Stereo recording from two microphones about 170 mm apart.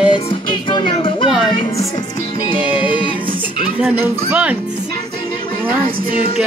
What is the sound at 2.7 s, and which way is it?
Speech, 10° right (ahead or behind).